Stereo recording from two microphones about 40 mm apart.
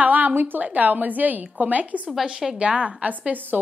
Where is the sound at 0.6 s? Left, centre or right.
Right.